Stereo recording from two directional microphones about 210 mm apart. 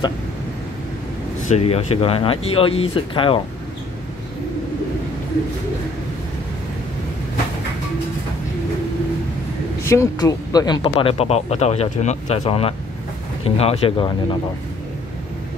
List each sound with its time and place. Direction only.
1.5 s speech: 30° left (ahead or behind)
9.8 s speech: 15° left (ahead or behind)